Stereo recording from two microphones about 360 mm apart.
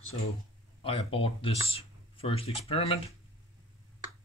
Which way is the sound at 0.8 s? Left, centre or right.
Centre.